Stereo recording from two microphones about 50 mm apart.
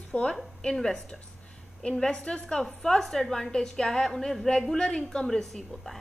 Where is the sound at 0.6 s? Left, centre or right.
Centre.